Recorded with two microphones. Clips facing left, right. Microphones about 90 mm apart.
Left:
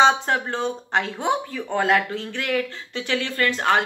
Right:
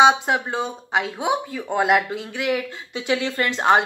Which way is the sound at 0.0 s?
10° right (ahead or behind).